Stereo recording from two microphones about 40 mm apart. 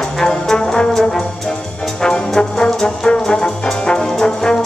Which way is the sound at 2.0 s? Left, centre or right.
Centre.